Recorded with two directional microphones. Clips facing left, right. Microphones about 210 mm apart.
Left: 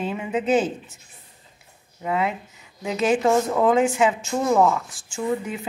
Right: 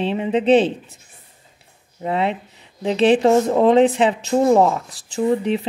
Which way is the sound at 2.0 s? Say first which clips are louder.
Right 3 dB; 30° right (ahead or behind).